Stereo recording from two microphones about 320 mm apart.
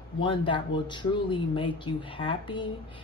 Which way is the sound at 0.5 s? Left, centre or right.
Centre.